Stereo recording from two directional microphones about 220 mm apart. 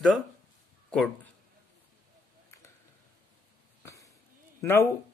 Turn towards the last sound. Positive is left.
turn(degrees=10)  # may be behind; listen again after turning